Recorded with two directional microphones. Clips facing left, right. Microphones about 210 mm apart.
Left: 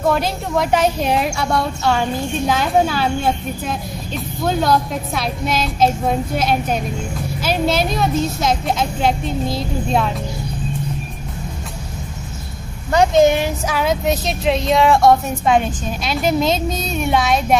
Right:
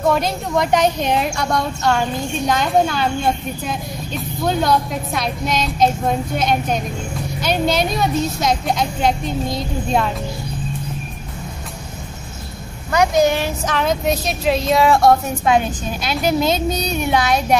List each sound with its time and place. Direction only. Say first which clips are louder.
0.0 s speech: even; centre (ahead or behind)
12.9 s a child's voice: left 3 dB; 25° left (ahead or behind)
13.7 s speech: even; centre (ahead or behind)